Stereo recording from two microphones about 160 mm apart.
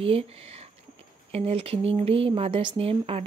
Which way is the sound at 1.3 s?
40° right (ahead or behind).